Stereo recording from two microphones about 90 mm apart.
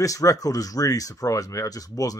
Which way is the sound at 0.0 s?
40° left (ahead or behind).